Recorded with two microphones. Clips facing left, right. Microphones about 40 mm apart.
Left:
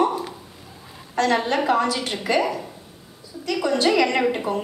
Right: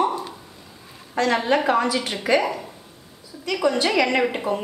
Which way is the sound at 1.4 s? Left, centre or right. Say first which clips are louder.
Right 1 dB; centre.